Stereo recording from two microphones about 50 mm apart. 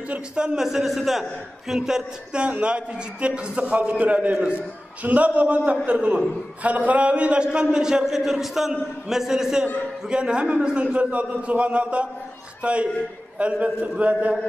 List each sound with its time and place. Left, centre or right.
0.4 s a man's voice: centre
0.7 s a man's voice: centre; by 14.3 s right